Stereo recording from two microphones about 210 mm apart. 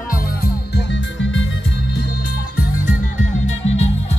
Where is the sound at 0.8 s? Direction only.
65° left (ahead or behind).